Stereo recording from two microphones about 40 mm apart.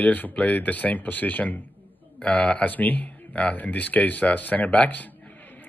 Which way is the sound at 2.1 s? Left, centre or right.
Left.